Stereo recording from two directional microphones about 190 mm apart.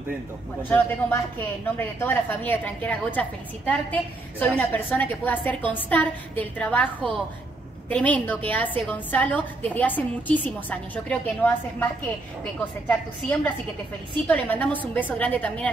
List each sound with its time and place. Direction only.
0.6 s a woman's voice: 10° left (ahead or behind)